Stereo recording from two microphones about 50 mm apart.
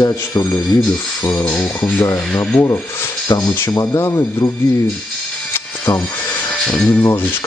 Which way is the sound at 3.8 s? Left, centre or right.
Left.